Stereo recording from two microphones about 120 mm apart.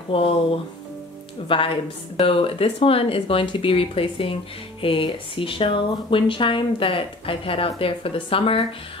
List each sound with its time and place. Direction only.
0.1 s speech: 50° left (ahead or behind)
1.5 s speech: 45° left (ahead or behind)